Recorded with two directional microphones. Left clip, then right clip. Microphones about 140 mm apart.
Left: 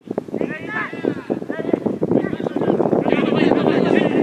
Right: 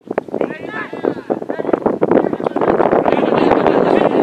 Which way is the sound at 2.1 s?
50° right (ahead or behind).